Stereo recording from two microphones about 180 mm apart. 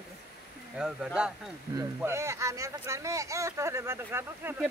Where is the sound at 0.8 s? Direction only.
5° right (ahead or behind).